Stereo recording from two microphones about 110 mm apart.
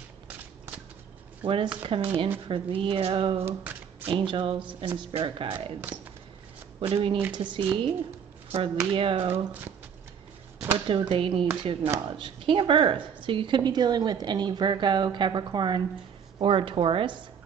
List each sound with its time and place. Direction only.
1.4 s speech: 55° right (ahead or behind)
6.8 s a woman's voice: 60° right (ahead or behind)
10.9 s a woman's voice: 55° right (ahead or behind)